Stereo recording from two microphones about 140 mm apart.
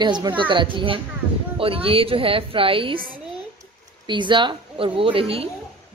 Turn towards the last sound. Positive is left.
turn(degrees=-40)  # may be behind; listen again after turning